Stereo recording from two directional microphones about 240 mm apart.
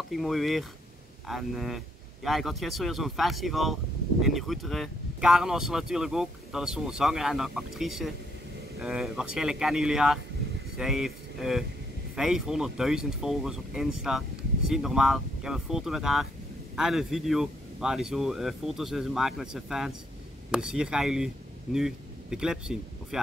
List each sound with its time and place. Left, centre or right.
0.1 s speech: centre